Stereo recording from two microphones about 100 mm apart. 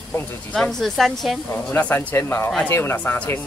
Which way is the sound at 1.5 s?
15° left (ahead or behind).